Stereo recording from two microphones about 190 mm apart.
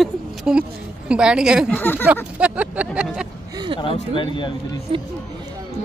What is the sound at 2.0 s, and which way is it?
Speech, 5° right (ahead or behind).